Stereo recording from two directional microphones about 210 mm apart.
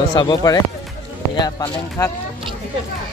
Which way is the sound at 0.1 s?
20° left (ahead or behind).